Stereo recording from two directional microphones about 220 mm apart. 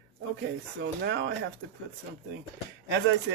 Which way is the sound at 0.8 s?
55° right (ahead or behind).